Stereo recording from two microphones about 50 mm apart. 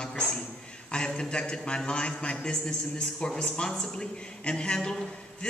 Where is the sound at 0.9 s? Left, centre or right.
Centre.